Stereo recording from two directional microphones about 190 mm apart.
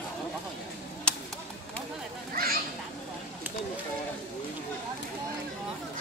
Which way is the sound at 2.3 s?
50° right (ahead or behind).